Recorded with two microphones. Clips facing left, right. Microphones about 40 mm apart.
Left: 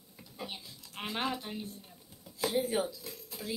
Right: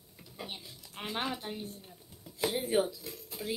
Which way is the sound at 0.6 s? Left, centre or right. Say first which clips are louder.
Right 1 dB; right.